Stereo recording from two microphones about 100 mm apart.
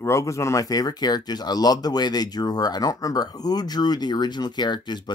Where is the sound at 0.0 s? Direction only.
30° left (ahead or behind).